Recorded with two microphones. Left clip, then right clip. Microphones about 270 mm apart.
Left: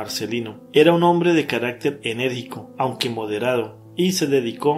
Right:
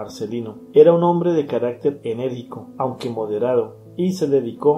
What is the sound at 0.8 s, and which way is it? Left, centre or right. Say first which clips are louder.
Speech: right 2 dB; left.